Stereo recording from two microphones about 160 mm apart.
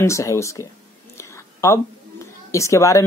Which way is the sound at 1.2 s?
15° left (ahead or behind).